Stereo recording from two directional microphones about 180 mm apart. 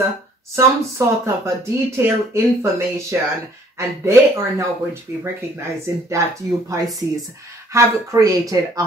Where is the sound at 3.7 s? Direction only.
15° right (ahead or behind).